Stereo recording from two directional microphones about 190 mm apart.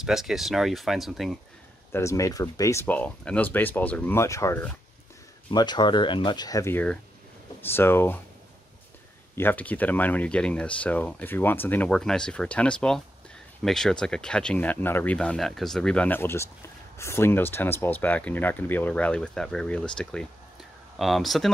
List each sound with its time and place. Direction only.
0.0 s speech: centre (ahead or behind)
1.9 s speech: 15° left (ahead or behind)
5.5 s speech: 25° left (ahead or behind)
9.3 s speech: 10° left (ahead or behind)